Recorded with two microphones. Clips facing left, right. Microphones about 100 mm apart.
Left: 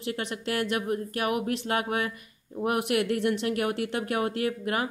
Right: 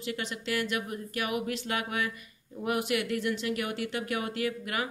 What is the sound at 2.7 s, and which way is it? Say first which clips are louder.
Speech: left 3 dB; 55° left (ahead or behind).